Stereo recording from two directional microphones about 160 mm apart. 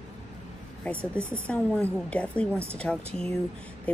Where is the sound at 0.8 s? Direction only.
10° left (ahead or behind).